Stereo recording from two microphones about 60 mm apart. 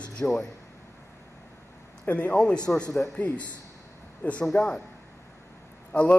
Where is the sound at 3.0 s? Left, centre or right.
Left.